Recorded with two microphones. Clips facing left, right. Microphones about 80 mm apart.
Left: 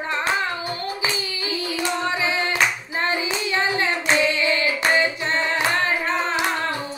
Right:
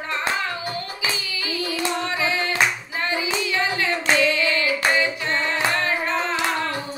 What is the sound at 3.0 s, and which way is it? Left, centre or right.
Hands, left.